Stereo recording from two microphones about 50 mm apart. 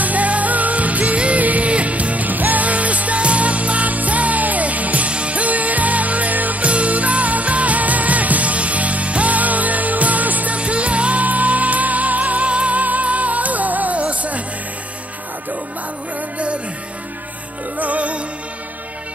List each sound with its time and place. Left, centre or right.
0.0 s music: right
17.7 s music: right